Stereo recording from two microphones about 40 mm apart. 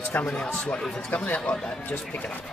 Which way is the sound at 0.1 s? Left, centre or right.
Left.